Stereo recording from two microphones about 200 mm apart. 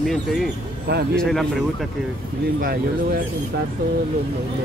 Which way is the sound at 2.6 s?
50° right (ahead or behind).